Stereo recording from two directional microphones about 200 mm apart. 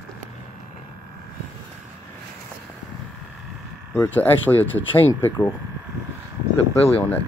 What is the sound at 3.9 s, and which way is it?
Speech, 10° left (ahead or behind).